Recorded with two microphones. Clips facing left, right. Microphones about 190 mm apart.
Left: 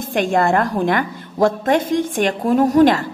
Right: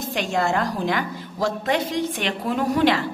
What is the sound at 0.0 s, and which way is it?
A woman's voice, 50° left (ahead or behind).